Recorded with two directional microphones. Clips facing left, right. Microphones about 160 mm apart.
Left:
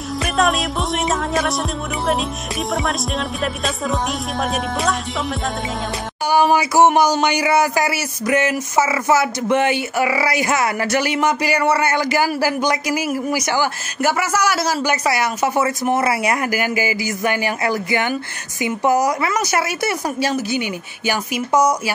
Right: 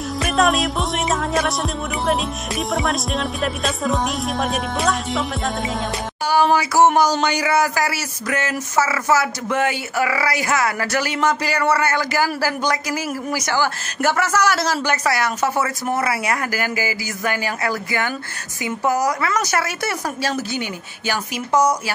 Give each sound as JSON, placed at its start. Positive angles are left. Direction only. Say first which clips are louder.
{"t": 0.2, "sound": "music", "louder": "right 1 dB", "side_deg": 0}
{"t": 2.7, "sound": "music", "louder": "even", "side_deg": 0}
{"t": 6.3, "sound": "a man's voice", "louder": "left 2 dB", "side_deg": 15}